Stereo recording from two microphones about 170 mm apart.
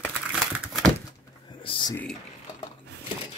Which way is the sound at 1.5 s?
30° left (ahead or behind).